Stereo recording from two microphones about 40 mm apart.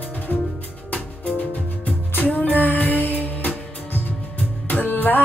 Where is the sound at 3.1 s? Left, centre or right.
Left.